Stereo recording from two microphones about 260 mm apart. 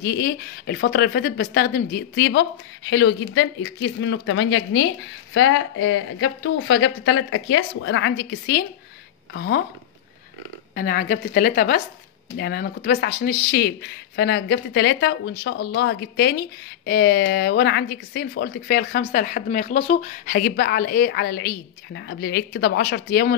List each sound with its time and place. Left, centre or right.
0.0 s speech: left
10.7 s speech: left